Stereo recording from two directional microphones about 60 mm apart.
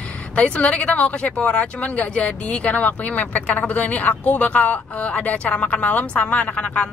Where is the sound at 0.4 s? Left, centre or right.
Left.